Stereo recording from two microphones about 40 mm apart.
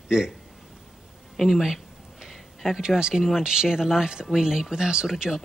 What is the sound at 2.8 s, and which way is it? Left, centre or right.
Speech, centre.